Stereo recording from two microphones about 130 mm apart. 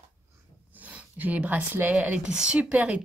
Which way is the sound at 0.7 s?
10° right (ahead or behind).